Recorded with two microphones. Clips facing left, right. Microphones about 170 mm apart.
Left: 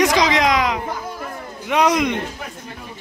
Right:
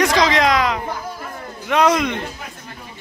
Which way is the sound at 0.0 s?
15° left (ahead or behind).